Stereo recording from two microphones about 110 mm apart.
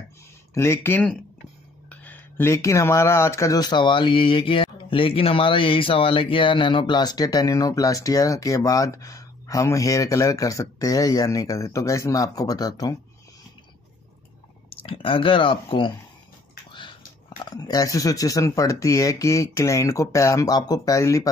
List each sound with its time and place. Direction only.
0.6 s speech: 20° left (ahead or behind)
14.7 s speech: 55° left (ahead or behind)
17.4 s speech: 35° left (ahead or behind)